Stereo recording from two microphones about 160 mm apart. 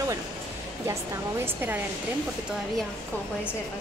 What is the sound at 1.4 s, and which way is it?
Speech, 10° right (ahead or behind).